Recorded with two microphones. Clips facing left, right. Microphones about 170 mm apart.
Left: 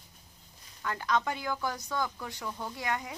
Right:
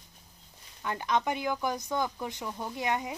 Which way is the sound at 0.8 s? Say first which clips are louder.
Right 1 dB; 20° right (ahead or behind).